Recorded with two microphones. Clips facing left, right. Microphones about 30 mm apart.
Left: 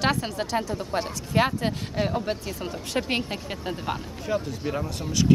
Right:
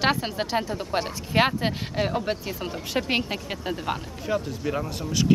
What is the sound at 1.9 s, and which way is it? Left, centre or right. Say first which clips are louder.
Speech: right 1 dB; centre.